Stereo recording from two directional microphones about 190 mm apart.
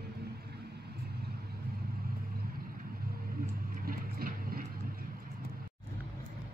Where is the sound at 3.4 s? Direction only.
50° right (ahead or behind).